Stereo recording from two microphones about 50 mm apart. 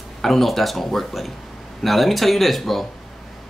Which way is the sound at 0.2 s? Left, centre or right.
Centre.